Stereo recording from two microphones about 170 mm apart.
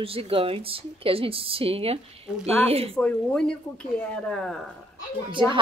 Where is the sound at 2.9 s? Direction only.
5° left (ahead or behind).